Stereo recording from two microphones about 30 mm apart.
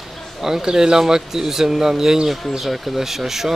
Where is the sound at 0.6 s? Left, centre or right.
Right.